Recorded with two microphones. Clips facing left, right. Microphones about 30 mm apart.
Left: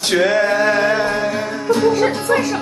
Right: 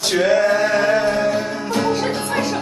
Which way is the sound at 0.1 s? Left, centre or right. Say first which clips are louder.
Left 1 dB; left.